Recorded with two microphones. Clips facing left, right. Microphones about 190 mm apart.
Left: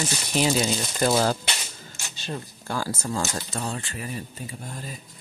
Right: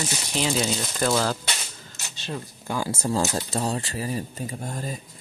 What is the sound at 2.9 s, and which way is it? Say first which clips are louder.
Speech: right 4 dB; 30° right (ahead or behind).